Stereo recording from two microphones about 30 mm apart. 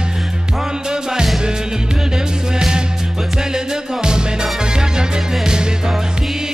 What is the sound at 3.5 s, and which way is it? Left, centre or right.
Music, right.